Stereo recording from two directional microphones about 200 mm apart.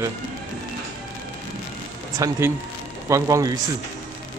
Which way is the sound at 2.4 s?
10° right (ahead or behind).